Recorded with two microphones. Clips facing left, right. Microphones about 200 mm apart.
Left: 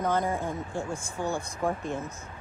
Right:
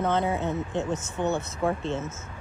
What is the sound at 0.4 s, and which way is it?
Speech, 10° left (ahead or behind).